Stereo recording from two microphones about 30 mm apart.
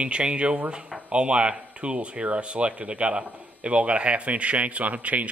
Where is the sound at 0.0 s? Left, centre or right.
Right.